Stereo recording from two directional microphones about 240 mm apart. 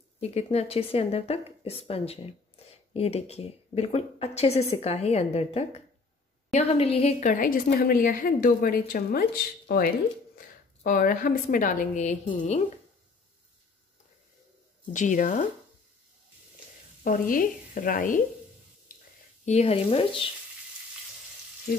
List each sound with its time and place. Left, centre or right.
0.2 s a woman's voice: left
14.9 s a woman's voice: left
17.0 s a woman's voice: left
19.4 s a woman's voice: left
21.7 s frying: left